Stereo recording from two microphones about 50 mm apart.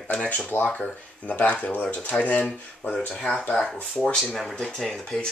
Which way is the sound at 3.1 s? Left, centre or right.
Centre.